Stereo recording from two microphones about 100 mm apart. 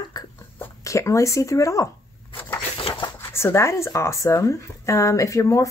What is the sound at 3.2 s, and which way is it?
Speech, 25° left (ahead or behind).